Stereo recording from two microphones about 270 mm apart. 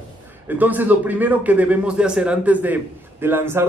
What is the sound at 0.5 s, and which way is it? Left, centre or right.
A man's voice, centre.